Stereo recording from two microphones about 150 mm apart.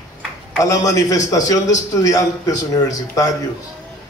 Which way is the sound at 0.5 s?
25° left (ahead or behind).